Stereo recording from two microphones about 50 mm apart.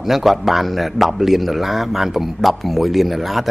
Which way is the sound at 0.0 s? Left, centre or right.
Centre.